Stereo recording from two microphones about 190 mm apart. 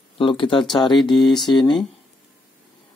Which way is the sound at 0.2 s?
25° left (ahead or behind).